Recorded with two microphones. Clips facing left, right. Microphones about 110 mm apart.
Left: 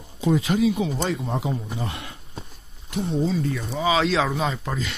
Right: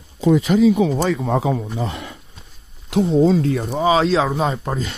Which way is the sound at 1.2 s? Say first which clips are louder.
Right 8 dB; 90° right.